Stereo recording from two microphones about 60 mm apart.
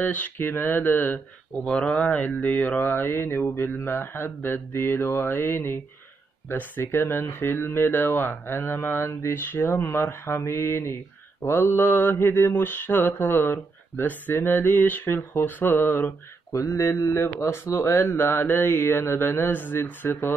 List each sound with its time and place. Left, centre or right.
0.0 s mantra: left
1.6 s speech: centre
1.9 s mantra: left
8.5 s speech: left
8.8 s mantra: left
16.5 s speech: left
18.0 s mantra: left